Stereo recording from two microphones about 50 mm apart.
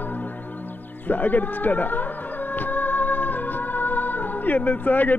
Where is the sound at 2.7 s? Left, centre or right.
Left.